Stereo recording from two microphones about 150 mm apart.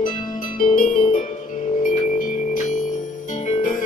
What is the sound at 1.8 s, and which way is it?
Music, 60° left (ahead or behind).